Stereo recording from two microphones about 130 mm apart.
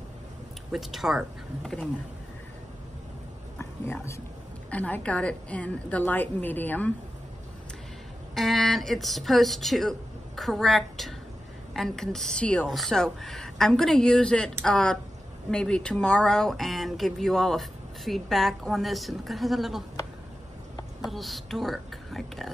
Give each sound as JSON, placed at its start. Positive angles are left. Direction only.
{"t": 0.7, "sound": "speech", "side_deg": 0}
{"t": 3.5, "sound": "a sound", "side_deg": 20}
{"t": 4.6, "sound": "a woman's voice", "side_deg": 10}
{"t": 8.4, "sound": "speech", "side_deg": 0}
{"t": 21.0, "sound": "speech", "side_deg": 0}